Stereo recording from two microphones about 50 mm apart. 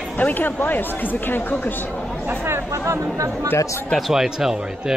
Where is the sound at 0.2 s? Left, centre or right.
Left.